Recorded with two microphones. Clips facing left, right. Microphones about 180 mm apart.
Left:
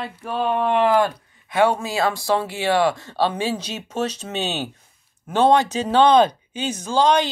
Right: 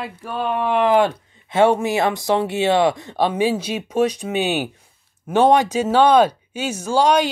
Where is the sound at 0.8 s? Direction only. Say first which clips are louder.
Right 2 dB; 20° right (ahead or behind).